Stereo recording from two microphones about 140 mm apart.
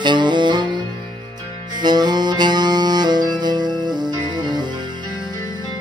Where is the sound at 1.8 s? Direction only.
30° right (ahead or behind).